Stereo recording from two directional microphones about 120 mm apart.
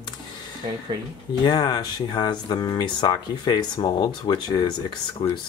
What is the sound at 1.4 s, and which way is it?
Speech, 35° left (ahead or behind).